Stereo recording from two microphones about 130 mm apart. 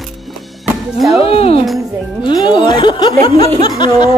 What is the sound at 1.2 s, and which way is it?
Laughter, 50° left (ahead or behind).